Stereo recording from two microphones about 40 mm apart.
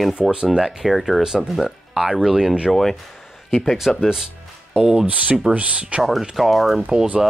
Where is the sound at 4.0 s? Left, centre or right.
Centre.